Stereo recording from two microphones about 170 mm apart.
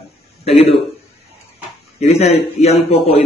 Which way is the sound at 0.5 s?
35° left (ahead or behind).